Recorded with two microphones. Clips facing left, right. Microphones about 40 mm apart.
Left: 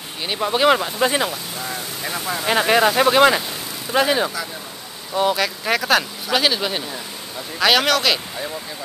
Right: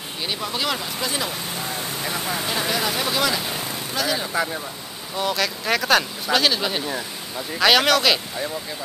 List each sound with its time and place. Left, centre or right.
0.4 s speech: left
1.6 s speech: centre
2.4 s speech: left
5.1 s speech: centre